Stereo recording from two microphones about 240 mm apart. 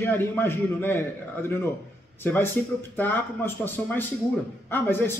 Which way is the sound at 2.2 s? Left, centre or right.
Centre.